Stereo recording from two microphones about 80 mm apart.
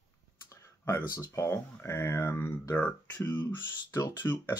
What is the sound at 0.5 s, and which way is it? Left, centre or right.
Speech, left.